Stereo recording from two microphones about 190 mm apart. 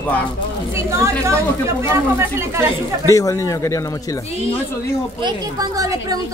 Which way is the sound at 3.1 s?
15° left (ahead or behind).